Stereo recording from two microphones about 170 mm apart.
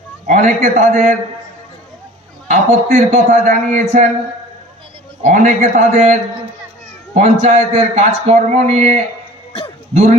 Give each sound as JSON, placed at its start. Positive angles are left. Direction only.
{"t": 0.3, "sound": "a man's voice", "side_deg": -45}
{"t": 2.4, "sound": "a man's voice", "side_deg": -45}
{"t": 5.2, "sound": "a man's voice", "side_deg": -45}
{"t": 7.2, "sound": "a man's voice", "side_deg": -45}